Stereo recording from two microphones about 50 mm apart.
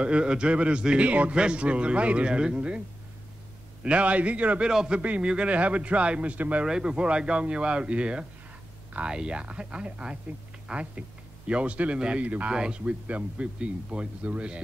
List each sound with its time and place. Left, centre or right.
0.0 s speech: right
3.8 s speech: right
4.6 s a man's voice: centre
6.6 s speech: centre